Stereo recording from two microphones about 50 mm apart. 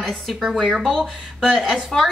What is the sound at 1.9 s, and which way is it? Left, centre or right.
Speech, centre.